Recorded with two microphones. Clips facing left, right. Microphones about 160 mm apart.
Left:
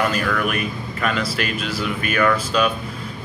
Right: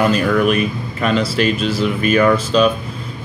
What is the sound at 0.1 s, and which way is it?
Speech, 25° right (ahead or behind).